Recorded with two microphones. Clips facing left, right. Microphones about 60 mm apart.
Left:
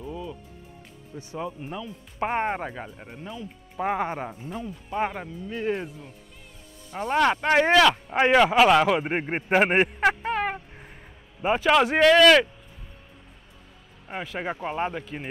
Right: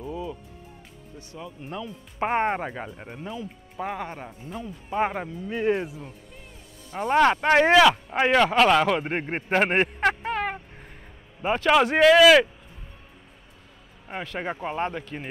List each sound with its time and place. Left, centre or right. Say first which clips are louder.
0.0 s music: right 2 dB; centre
1.1 s speech: left 6 dB; left
1.6 s speech: left 1 dB; centre
2.1 s speech: right 2 dB; centre
3.3 s speech: right 3 dB; centre
3.8 s speech: left 5 dB; left
4.5 s speech: left 1 dB; centre
4.9 s speech: right 2 dB; centre
14.0 s speech: even; centre